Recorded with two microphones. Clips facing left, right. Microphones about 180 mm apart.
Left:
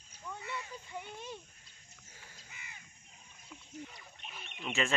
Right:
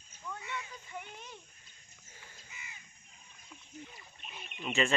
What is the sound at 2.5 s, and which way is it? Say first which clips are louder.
Crow: right 1 dB; 55° left (ahead or behind).